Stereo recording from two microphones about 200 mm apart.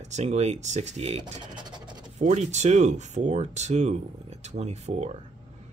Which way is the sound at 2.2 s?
35° right (ahead or behind).